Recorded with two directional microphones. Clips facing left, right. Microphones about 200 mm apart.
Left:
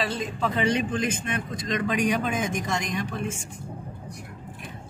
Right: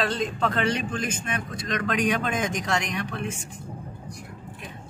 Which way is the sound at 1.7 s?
55° right (ahead or behind).